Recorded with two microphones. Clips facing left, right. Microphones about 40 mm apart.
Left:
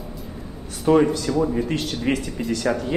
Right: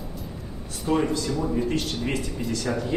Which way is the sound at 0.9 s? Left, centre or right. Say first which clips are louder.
Left 7 dB; left.